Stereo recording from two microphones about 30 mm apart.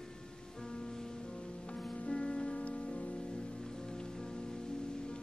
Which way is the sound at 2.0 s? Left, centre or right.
Left.